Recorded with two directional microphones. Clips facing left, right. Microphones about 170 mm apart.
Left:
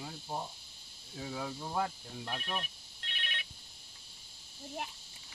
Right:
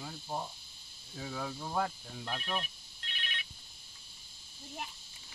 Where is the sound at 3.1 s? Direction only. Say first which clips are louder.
Even; 60° left (ahead or behind).